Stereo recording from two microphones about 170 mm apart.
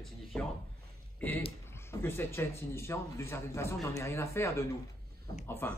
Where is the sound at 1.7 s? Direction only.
15° left (ahead or behind).